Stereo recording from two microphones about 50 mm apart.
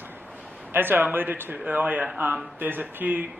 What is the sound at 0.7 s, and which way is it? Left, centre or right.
Speech, right.